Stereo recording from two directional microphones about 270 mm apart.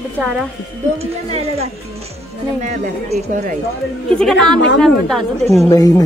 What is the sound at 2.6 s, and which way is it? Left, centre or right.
Speech, right.